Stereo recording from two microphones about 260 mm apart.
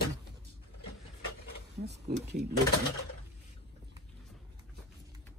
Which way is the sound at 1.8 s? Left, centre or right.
Right.